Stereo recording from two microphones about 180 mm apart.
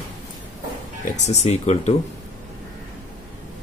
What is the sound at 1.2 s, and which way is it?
Speech, 40° left (ahead or behind).